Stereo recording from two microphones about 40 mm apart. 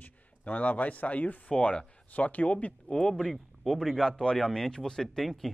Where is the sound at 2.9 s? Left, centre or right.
Centre.